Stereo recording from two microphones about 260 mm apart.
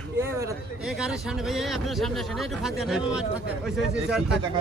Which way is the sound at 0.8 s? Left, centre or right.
Centre.